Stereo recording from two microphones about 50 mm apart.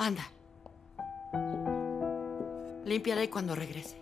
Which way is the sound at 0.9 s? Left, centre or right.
Centre.